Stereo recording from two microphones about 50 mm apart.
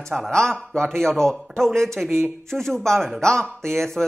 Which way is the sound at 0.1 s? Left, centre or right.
Centre.